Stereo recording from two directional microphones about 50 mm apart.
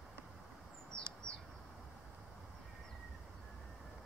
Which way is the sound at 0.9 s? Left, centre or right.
Right.